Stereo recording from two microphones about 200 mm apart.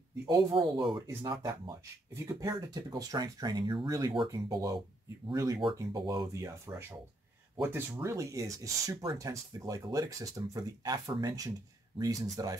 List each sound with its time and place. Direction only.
0.3 s speech: 25° right (ahead or behind)
7.6 s speech: 15° right (ahead or behind)